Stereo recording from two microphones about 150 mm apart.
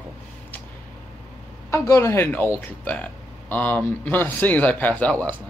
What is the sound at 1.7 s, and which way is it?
Speech, 20° left (ahead or behind).